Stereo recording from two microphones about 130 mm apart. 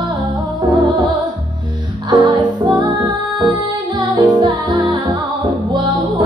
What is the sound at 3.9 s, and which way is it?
Music, 30° right (ahead or behind).